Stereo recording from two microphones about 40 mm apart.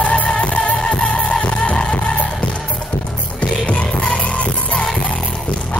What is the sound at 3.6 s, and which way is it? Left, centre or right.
Music, left.